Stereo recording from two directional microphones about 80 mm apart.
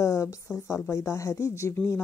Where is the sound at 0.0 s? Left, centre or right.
Left.